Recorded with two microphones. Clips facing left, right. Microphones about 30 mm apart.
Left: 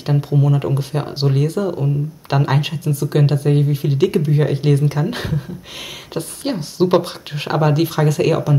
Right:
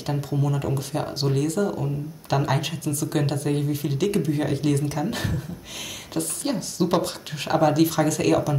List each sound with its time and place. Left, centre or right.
0.0 s speech: left